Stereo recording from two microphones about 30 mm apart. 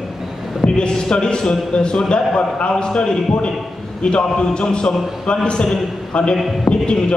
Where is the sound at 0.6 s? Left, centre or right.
Left.